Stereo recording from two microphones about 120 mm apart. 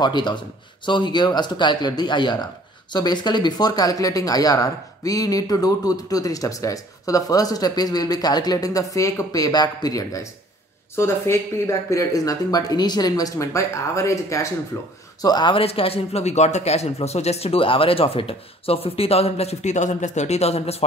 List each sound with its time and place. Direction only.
0.0 s speech: 40° left (ahead or behind); by 14.9 s 20° left (ahead or behind)
15.2 s speech: 40° left (ahead or behind); by 20.8 s 60° left (ahead or behind)